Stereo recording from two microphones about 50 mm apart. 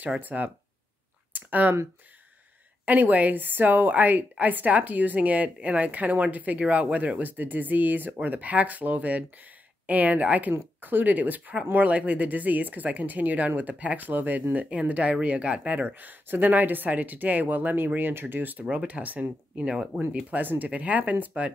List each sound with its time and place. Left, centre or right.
0.2 s speech: right
1.3 s a sound: right
2.8 s speech: right
19.6 s speech: centre
20.2 s speech: right